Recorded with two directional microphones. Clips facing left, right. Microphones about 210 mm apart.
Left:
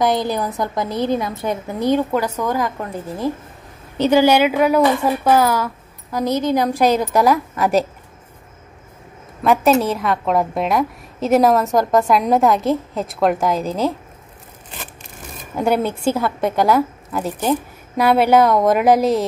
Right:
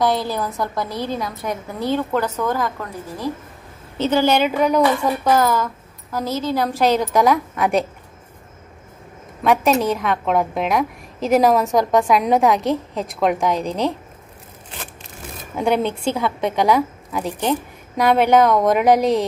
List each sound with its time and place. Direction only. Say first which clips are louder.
0.0 s a woman's voice: left 2 dB; 20° left (ahead or behind)
9.4 s a woman's voice: left 2 dB; centre (ahead or behind)
15.5 s a woman's voice: left 1 dB; 5° left (ahead or behind)